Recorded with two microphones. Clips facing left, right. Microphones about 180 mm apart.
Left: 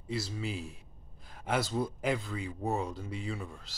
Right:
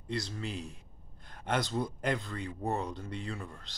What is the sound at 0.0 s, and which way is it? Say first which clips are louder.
Speech: left 1 dB; 5° left (ahead or behind).